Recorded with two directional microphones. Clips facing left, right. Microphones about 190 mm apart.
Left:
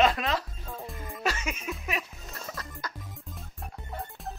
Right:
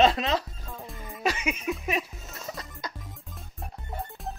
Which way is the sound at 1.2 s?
15° right (ahead or behind).